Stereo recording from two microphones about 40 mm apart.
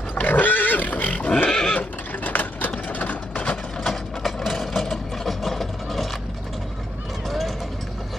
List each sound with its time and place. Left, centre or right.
0.1 s pig: left
1.5 s horse: centre
1.8 s a sound: left
2.9 s vehicle: left
3.8 s a sound: centre
7.2 s vehicle: centre